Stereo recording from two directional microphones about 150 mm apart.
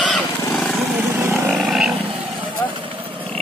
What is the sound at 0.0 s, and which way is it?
Wild animals, centre (ahead or behind).